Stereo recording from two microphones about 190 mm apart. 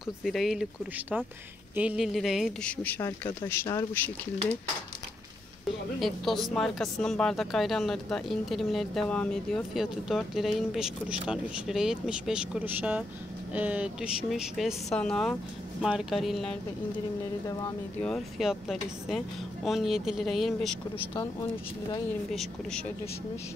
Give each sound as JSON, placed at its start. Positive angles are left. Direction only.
{"t": 0.0, "sound": "speech", "side_deg": 0}
{"t": 2.8, "sound": "speech", "side_deg": 10}
{"t": 5.9, "sound": "speech", "side_deg": 0}
{"t": 18.0, "sound": "speech", "side_deg": 0}
{"t": 22.3, "sound": "speech", "side_deg": 0}